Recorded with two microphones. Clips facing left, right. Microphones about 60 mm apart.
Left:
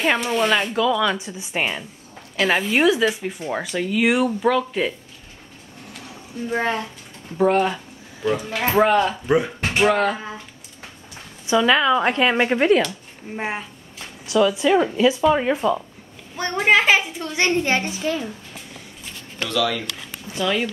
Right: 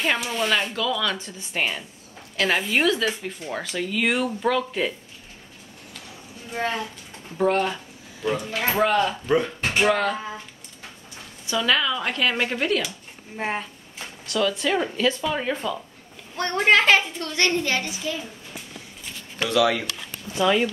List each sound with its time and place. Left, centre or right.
0.0 s speech: centre
6.5 s speech: left
7.3 s speech: centre
8.7 s speech: left
11.4 s speech: centre
11.8 s a woman's voice: left
14.2 s speech: centre
16.3 s a woman's voice: centre; by 18.3 s left
19.4 s speech: centre
20.4 s speech: centre